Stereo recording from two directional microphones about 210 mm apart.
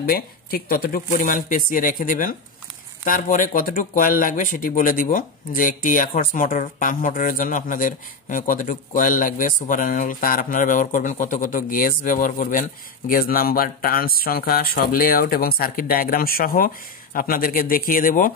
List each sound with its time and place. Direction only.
0.1 s speech: 45° left (ahead or behind)